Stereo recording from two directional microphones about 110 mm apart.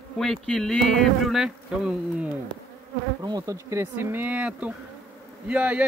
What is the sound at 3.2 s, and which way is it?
Speech, 35° right (ahead or behind).